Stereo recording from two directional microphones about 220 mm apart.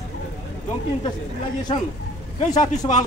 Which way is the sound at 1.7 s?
25° left (ahead or behind).